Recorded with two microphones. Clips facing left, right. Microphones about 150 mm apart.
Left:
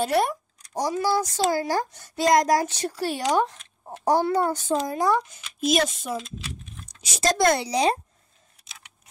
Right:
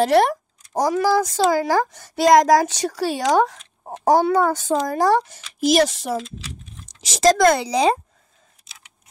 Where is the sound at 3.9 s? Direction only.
75° right (ahead or behind); by 7.4 s 90° right.